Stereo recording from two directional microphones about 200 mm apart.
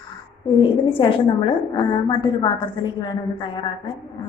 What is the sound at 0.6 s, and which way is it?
Speech, 25° left (ahead or behind).